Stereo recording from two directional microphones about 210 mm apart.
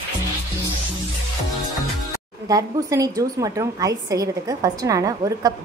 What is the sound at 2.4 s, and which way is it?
A woman's voice, 15° right (ahead or behind).